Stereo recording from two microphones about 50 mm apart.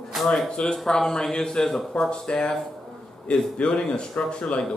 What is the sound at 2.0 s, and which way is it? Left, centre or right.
Speech, centre.